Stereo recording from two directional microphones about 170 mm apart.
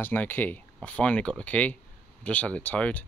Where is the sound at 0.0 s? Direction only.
10° left (ahead or behind).